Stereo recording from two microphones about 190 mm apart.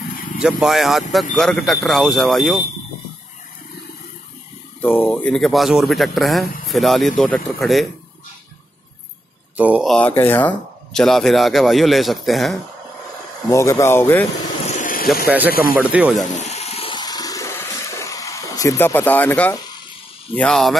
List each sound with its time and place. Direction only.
0.4 s speech: 5° right (ahead or behind)
4.8 s speech: 10° left (ahead or behind)
9.6 s speech: 5° right (ahead or behind)
9.9 s speech: 10° left (ahead or behind)
13.5 s speech: 15° left (ahead or behind)
14.7 s vehicle: 45° left (ahead or behind)
15.2 s speech: 10° right (ahead or behind)
16.3 s a sound: 35° left (ahead or behind); by 19.5 s 10° left (ahead or behind)
20.3 s speech: 5° left (ahead or behind)